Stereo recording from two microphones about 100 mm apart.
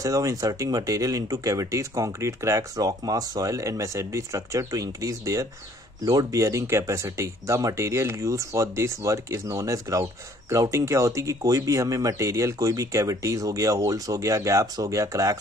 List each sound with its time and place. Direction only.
0.0 s speech: 35° right (ahead or behind)